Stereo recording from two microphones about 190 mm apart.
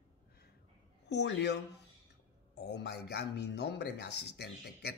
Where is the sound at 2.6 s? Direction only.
60° left (ahead or behind).